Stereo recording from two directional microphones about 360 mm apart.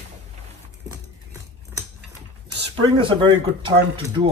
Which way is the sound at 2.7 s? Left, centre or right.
Centre.